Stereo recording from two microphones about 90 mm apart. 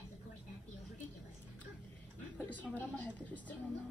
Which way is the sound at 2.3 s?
15° left (ahead or behind).